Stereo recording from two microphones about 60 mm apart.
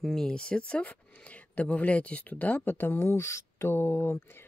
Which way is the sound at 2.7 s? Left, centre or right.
Left.